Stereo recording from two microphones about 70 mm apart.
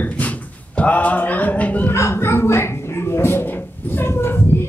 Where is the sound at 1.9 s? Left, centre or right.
Left.